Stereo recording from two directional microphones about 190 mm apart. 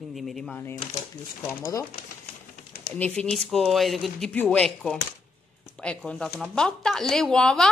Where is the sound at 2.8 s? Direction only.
5° left (ahead or behind).